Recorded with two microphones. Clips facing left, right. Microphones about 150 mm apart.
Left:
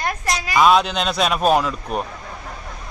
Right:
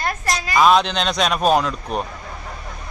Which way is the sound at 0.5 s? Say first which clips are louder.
Even; centre (ahead or behind).